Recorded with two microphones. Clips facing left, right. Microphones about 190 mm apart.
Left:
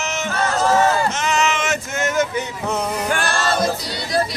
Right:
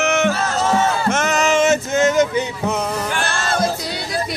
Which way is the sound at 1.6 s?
20° right (ahead or behind).